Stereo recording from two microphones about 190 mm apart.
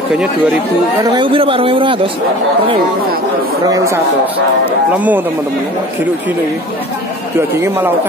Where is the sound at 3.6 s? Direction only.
15° right (ahead or behind).